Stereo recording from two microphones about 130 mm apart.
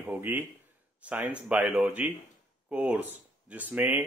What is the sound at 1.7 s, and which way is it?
Speech, centre (ahead or behind).